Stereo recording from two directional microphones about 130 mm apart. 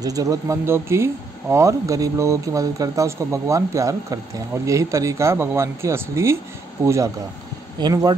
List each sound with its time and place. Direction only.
0.0 s speech: 25° right (ahead or behind)